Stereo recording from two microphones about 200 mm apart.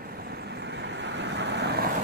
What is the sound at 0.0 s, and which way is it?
Vehicle, 50° right (ahead or behind).